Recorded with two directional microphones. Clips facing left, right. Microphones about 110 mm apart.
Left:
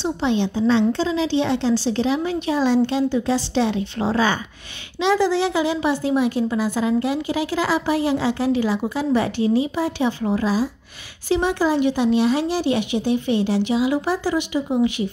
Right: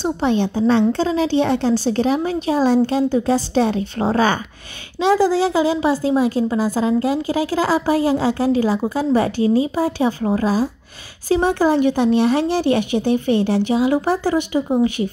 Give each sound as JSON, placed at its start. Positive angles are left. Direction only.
{"t": 0.0, "sound": "speech", "side_deg": -50}
{"t": 5.0, "sound": "a woman's voice", "side_deg": -35}